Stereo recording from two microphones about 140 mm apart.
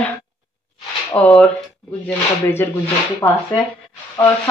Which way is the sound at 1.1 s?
15° left (ahead or behind).